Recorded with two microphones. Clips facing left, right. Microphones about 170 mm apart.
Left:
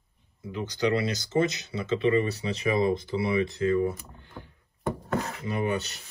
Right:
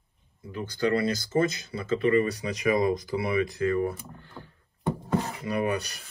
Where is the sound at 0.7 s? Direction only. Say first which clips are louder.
Right 1 dB; 50° right (ahead or behind).